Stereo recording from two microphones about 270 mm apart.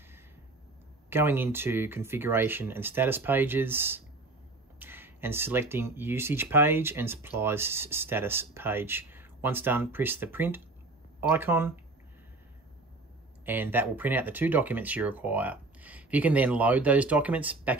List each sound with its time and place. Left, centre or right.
1.1 s speech: centre
13.5 s speech: centre